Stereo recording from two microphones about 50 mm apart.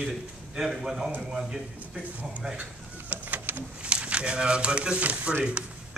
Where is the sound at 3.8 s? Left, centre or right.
Centre.